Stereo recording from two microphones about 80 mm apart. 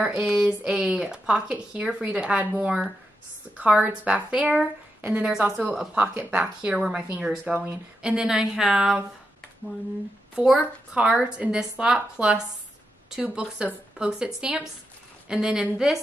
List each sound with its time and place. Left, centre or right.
0.2 s speech: centre
3.8 s speech: centre
7.5 s speech: right
8.0 s speech: centre
10.3 s speech: centre